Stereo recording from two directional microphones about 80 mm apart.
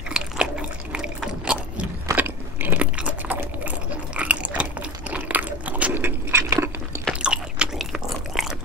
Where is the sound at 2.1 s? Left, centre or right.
Right.